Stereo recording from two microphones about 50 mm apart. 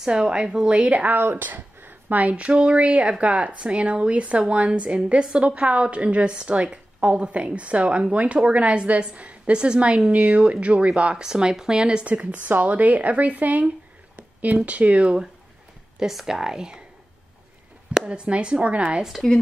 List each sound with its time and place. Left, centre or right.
0.0 s speech: centre
0.7 s speech: right
1.1 s speech: right
16.0 s speech: centre
17.9 s speech: right